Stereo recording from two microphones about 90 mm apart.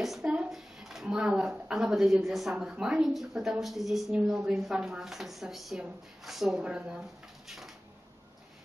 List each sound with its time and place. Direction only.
0.0 s a woman's voice: 5° right (ahead or behind)